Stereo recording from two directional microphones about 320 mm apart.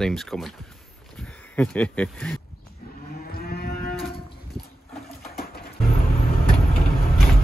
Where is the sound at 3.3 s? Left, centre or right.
Left.